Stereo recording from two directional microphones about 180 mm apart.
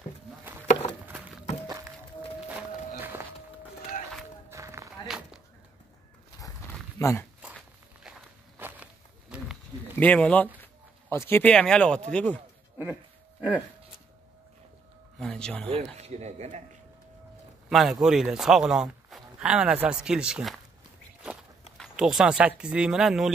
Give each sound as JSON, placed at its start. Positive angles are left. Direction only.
{"t": 1.0, "sound": "a sound", "side_deg": -5}
{"t": 1.7, "sound": "music", "side_deg": -20}
{"t": 3.0, "sound": "a sound", "side_deg": -15}
{"t": 4.5, "sound": "run", "side_deg": -15}
{"t": 5.0, "sound": "a sound", "side_deg": 0}
{"t": 7.0, "sound": "speech", "side_deg": 15}
{"t": 8.5, "sound": "walk", "side_deg": -10}
{"t": 9.3, "sound": "a sound", "side_deg": -5}
{"t": 9.9, "sound": "speech", "side_deg": 5}
{"t": 13.4, "sound": "speech", "side_deg": -10}
{"t": 15.1, "sound": "speech", "side_deg": 5}
{"t": 15.7, "sound": "speech", "side_deg": -35}
{"t": 17.6, "sound": "a man's voice", "side_deg": 0}
{"t": 21.7, "sound": "speech", "side_deg": 0}